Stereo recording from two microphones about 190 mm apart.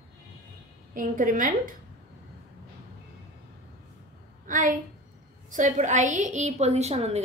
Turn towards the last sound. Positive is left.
turn(degrees=-35)  # may be behind; listen again after turning